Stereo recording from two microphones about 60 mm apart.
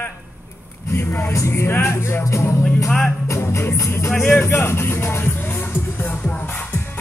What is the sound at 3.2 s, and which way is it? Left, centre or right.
Music, left.